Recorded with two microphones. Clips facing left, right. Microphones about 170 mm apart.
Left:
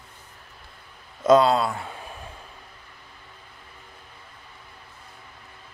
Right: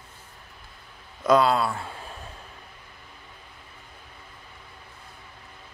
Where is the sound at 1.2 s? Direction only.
20° left (ahead or behind).